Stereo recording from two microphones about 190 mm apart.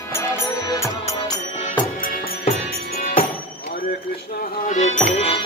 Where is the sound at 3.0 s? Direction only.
40° left (ahead or behind).